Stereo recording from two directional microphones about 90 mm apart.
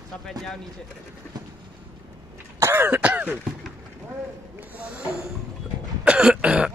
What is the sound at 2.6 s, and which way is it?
Throat clearing, 25° right (ahead or behind).